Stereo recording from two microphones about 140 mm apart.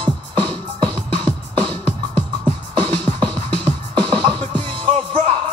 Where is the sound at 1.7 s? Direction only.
10° left (ahead or behind).